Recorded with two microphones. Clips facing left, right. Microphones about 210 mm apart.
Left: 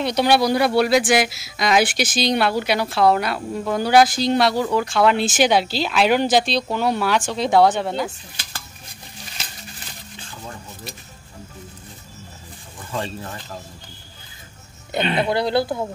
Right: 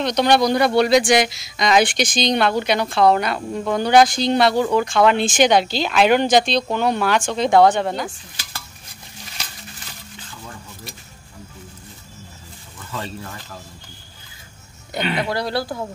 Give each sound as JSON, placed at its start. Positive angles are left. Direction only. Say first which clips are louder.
{"t": 0.0, "sound": "speech", "louder": "right 1 dB", "side_deg": 5}
{"t": 12.9, "sound": "speech", "louder": "left 3 dB", "side_deg": 30}
{"t": 14.9, "sound": "speech", "louder": "left 2 dB", "side_deg": 25}